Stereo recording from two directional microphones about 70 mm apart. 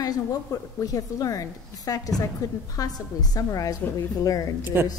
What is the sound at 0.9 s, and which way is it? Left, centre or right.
Speech, left.